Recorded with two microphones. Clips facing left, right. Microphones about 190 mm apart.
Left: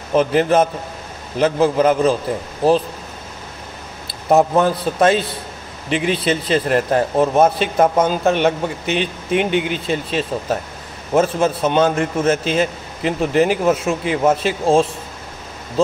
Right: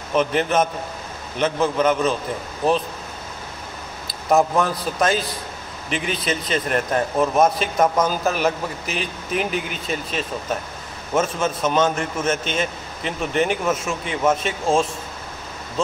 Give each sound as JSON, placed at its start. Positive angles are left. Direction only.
{"t": 0.1, "sound": "a man's voice", "side_deg": 35}
{"t": 4.1, "sound": "a man's voice", "side_deg": 30}